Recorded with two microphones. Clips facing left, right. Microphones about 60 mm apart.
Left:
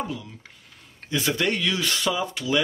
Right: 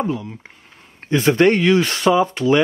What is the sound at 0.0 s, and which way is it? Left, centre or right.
A man's voice, right.